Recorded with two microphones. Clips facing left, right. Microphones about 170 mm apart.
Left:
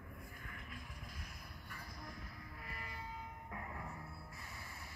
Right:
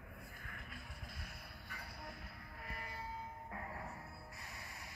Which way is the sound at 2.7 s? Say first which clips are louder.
Right 2 dB; 35° right (ahead or behind).